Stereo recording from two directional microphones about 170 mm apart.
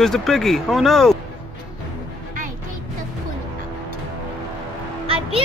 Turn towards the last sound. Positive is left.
turn(degrees=-35)  # may be behind; listen again after turning